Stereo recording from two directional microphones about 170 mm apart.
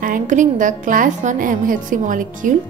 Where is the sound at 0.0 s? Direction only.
50° right (ahead or behind).